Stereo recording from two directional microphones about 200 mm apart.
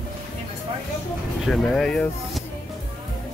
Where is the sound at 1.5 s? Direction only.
5° left (ahead or behind).